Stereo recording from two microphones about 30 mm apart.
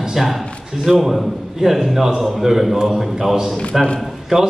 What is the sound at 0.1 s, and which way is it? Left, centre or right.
A man's voice, centre.